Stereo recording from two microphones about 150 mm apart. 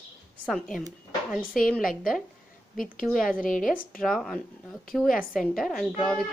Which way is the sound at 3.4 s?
65° left (ahead or behind).